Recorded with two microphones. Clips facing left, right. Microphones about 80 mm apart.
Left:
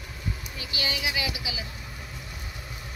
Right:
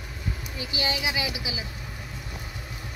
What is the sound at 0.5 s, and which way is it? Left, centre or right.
A child's voice, right.